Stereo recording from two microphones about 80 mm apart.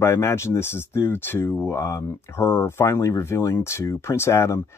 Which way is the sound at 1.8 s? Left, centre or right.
Left.